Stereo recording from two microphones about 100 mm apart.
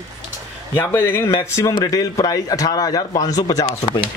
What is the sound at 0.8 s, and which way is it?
Speech, 20° left (ahead or behind).